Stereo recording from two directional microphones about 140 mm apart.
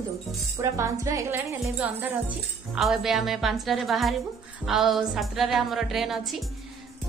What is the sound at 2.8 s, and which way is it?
A woman's voice, centre (ahead or behind).